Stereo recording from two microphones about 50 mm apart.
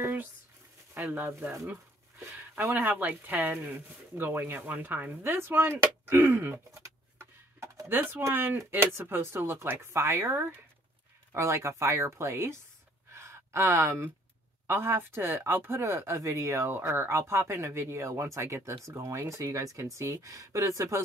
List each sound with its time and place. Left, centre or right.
0.9 s speech: right
5.3 s a sound: right
8.4 s speech: right
11.3 s speech: right
13.1 s gasp: right
13.7 s speech: right
15.8 s speech: right
18.9 s speech: right